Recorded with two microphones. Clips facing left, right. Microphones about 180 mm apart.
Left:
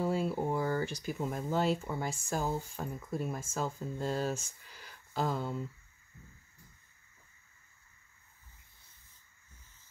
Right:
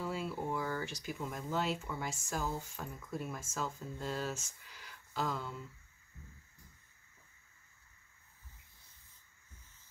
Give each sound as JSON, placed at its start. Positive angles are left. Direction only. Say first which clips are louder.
{"t": 0.0, "sound": "speech", "louder": "left 7 dB", "side_deg": 45}